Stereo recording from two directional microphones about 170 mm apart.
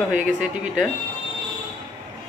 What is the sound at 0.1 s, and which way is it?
Speech, 50° right (ahead or behind).